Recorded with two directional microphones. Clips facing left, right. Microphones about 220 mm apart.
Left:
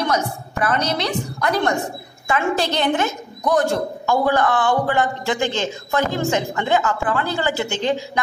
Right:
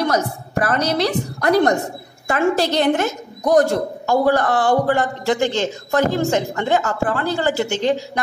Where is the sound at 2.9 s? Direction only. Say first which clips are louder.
Right 2 dB; 40° right (ahead or behind).